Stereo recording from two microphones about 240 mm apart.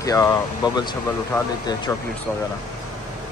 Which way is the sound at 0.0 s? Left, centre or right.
Centre.